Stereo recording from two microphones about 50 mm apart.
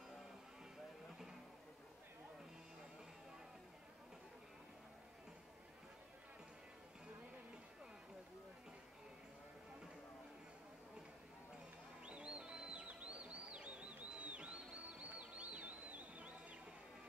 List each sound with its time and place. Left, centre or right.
12.0 s music: right